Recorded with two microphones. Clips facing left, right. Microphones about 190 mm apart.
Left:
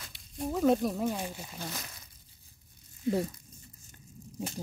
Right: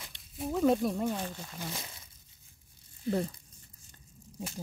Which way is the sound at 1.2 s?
10° left (ahead or behind).